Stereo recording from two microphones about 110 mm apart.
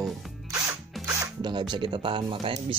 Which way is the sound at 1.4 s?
40° right (ahead or behind).